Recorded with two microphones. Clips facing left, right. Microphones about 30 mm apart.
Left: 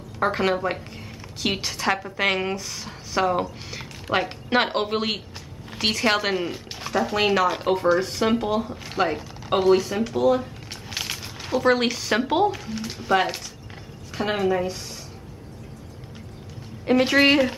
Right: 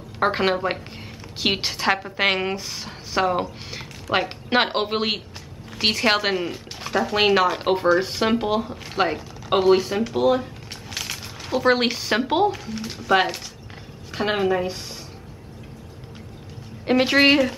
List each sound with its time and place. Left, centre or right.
0.2 s a woman's voice: right
6.3 s speech: centre
7.2 s a woman's voice: right
9.5 s a woman's voice: centre
11.0 s a sound: centre
11.5 s speech: centre
12.4 s speech: centre
14.1 s a woman's voice: right
16.8 s speech: centre